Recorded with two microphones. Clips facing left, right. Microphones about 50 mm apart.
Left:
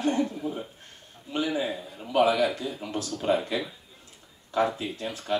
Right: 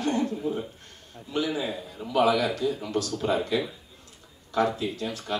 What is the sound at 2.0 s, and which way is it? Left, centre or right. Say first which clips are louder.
A man's voice: even; left.